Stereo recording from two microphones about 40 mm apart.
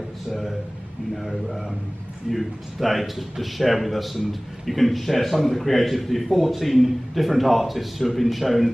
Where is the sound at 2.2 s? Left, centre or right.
Centre.